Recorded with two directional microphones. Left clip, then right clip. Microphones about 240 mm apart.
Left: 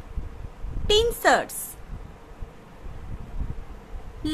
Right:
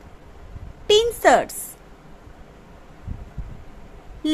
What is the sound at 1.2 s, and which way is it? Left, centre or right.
Speech, centre.